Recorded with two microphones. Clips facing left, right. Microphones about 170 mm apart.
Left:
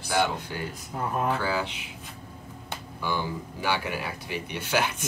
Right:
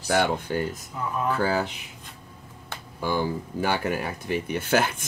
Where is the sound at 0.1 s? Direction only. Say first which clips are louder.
Right 3 dB; 50° right (ahead or behind).